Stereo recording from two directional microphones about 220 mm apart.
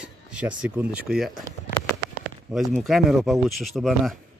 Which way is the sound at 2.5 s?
Centre (ahead or behind).